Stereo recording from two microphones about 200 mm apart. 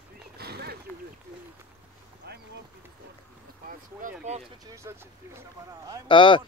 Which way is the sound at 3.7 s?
40° right (ahead or behind).